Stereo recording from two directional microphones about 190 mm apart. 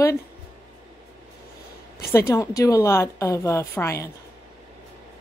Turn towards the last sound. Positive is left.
turn(degrees=15)  # may be behind; listen again after turning